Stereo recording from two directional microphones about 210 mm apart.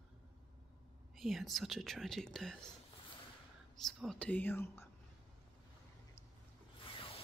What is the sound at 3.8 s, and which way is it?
Speech, centre (ahead or behind).